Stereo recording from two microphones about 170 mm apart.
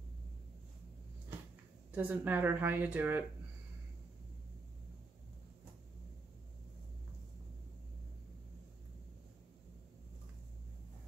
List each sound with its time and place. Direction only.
1.9 s speech: 10° right (ahead or behind)